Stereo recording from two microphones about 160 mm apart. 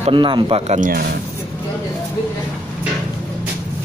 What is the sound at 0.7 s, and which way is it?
Speech, 60° right (ahead or behind).